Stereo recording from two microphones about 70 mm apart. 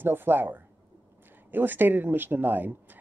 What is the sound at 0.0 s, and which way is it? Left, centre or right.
Speech, right.